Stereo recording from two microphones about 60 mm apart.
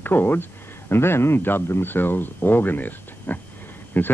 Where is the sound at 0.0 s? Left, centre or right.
Left.